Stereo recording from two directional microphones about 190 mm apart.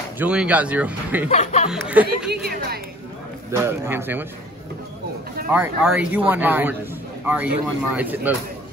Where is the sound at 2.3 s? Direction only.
55° right (ahead or behind).